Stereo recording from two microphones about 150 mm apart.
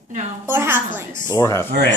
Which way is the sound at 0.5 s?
15° right (ahead or behind).